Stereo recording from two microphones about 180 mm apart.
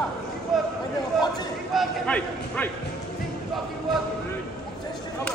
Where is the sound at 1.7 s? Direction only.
5° left (ahead or behind).